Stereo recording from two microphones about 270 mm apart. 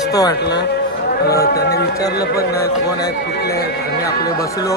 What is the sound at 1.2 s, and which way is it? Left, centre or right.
Speech, left.